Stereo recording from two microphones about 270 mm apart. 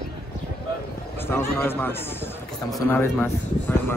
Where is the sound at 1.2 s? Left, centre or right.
Centre.